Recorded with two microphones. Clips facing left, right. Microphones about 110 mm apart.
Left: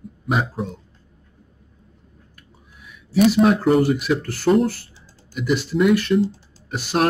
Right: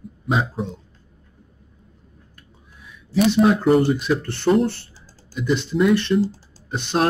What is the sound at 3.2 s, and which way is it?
Speech, centre (ahead or behind).